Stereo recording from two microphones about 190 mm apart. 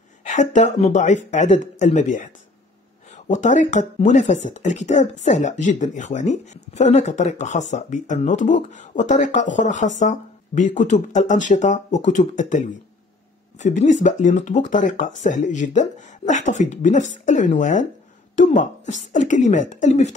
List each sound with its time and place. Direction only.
0.2 s speech: 40° left (ahead or behind)
3.3 s speech: 40° left (ahead or behind)